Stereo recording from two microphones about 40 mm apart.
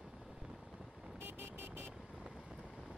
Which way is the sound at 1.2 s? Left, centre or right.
Right.